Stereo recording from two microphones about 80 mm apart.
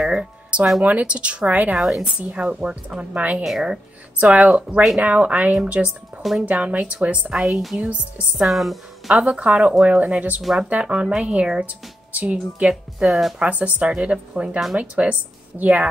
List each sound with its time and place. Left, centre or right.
0.0 s a sound: centre
0.8 s a woman's voice: centre
1.8 s speech: centre
2.1 s a woman's voice: centre
3.4 s speech: centre
4.2 s a woman's voice: centre
7.7 s a woman's voice: centre
8.4 s speech: centre
9.1 s a woman's voice: centre
10.4 s speech: centre
10.7 s a woman's voice: centre
13.0 s speech: centre
13.4 s a woman's voice: centre